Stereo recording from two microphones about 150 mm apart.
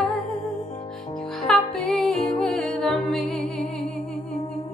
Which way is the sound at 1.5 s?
Centre (ahead or behind).